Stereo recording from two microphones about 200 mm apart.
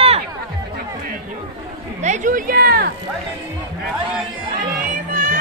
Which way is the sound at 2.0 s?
40° right (ahead or behind).